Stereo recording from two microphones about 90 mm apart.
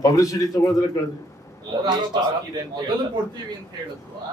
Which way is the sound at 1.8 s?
50° right (ahead or behind).